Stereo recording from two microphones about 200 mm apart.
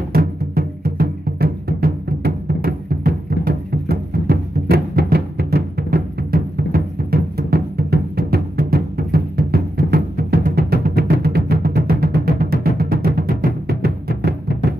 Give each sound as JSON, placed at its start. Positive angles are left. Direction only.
{"t": 0.1, "sound": "music", "side_deg": -45}